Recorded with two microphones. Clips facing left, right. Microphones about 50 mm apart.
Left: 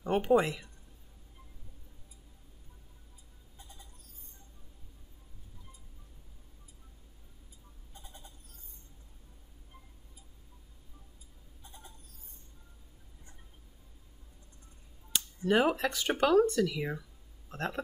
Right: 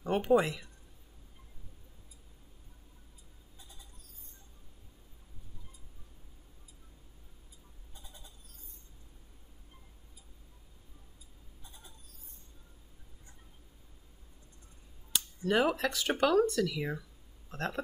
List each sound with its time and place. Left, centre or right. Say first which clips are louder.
0.0 s speech: left 1 dB; centre
7.9 s bleat: left 3 dB; left
15.1 s speech: left 2 dB; centre